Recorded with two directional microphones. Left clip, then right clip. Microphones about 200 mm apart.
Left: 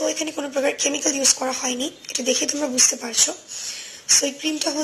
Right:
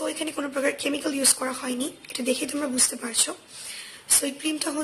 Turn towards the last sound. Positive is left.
turn(degrees=0)  # may be behind; listen again after turning